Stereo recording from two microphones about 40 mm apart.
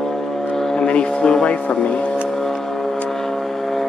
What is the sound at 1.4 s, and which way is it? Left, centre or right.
Speech, left.